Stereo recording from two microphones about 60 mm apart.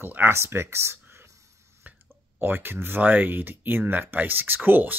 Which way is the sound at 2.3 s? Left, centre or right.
Right.